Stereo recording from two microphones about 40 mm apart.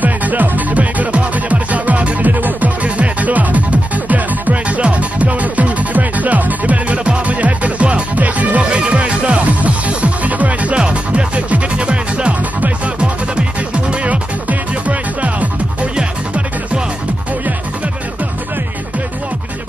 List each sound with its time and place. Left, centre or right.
0.0 s music: right
13.8 s music: right
14.5 s music: right
16.0 s music: right